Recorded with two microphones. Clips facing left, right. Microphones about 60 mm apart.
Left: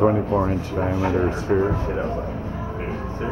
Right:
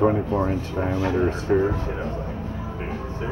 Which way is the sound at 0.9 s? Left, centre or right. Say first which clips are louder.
Even; centre.